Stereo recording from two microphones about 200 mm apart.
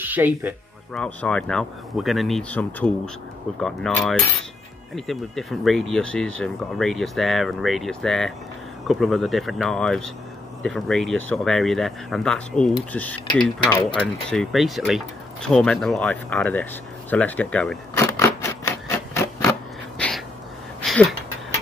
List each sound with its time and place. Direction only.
0.0 s speech: 10° right (ahead or behind)
0.9 s speech: 5° left (ahead or behind)
13.3 s speech: 25° left (ahead or behind)
13.9 s speech: centre (ahead or behind)
17.9 s a sound: 15° left (ahead or behind)
20.0 s a sound: centre (ahead or behind)